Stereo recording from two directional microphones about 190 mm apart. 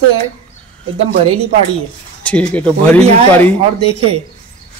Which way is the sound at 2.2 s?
5° left (ahead or behind).